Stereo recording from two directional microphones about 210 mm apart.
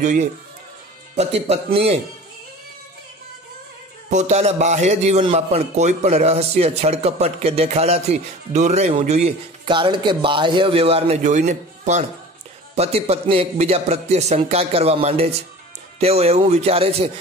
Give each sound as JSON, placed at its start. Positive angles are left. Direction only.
{"t": 0.0, "sound": "a man's voice", "side_deg": -35}
{"t": 4.1, "sound": "a man's voice", "side_deg": -35}